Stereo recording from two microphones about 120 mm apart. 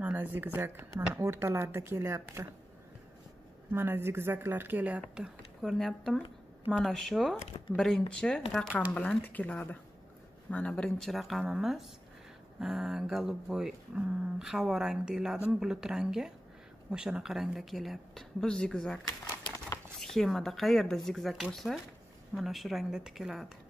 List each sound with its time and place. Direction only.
0.0 s speech: 15° right (ahead or behind)
3.7 s speech: 20° right (ahead or behind); by 18.9 s 5° left (ahead or behind)
20.0 s speech: 5° left (ahead or behind)